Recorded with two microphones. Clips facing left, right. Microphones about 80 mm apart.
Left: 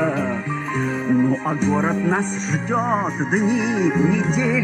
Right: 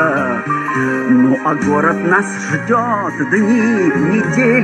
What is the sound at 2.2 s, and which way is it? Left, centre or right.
Music, right.